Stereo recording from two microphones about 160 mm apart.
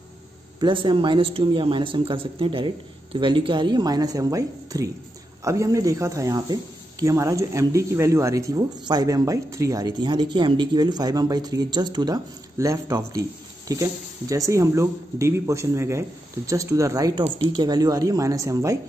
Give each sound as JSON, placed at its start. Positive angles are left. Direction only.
{"t": 0.6, "sound": "a man's voice", "side_deg": -30}
{"t": 17.2, "sound": "a man's voice", "side_deg": -35}